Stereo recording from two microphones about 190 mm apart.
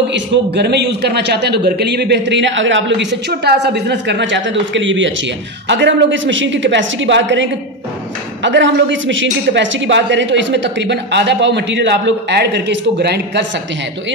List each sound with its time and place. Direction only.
0.1 s a man's voice: 65° right (ahead or behind)
8.5 s speech: 70° right (ahead or behind)